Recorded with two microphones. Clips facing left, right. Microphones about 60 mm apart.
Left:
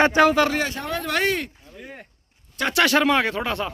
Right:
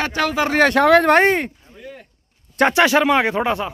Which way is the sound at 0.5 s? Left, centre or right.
Right.